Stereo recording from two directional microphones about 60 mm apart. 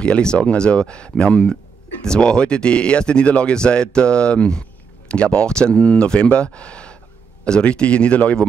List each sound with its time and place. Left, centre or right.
0.0 s speech: centre